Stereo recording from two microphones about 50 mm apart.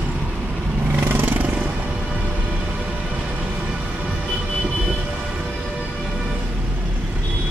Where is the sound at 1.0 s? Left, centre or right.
Right.